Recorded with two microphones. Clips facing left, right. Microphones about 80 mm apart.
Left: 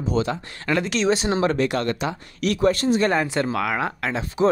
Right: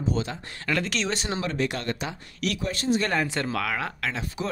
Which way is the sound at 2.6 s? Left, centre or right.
Left.